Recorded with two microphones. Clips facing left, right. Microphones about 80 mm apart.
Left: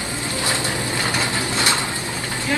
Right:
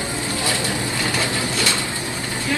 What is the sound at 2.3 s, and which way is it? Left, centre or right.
Vehicle, left.